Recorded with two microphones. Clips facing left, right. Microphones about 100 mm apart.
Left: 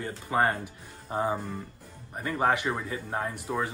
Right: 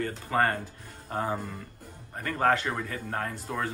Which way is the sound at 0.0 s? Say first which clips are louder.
Even; 15° left (ahead or behind).